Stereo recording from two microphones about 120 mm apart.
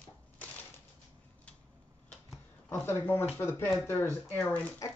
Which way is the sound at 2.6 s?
20° left (ahead or behind).